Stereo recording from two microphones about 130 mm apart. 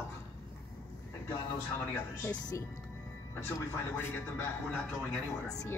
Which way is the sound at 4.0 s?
15° left (ahead or behind).